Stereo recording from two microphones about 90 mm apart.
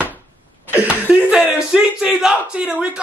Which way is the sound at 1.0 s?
10° right (ahead or behind).